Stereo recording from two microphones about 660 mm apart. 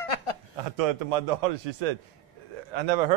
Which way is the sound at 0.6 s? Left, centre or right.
Right.